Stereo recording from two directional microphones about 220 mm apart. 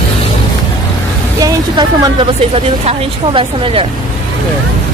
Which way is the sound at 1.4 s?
15° right (ahead or behind).